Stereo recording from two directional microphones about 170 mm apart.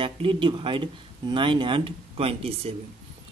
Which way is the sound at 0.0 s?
30° right (ahead or behind).